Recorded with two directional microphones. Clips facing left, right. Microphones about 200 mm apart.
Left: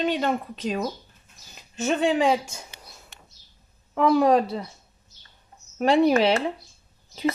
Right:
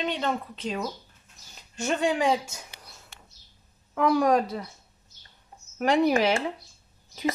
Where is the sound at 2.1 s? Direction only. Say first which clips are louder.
Left 3 dB; 20° left (ahead or behind).